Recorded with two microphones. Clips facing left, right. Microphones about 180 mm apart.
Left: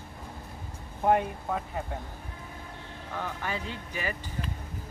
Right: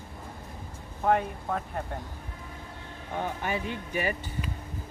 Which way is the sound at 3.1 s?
20° right (ahead or behind).